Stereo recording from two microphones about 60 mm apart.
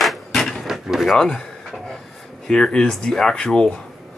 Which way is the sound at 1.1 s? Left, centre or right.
Centre.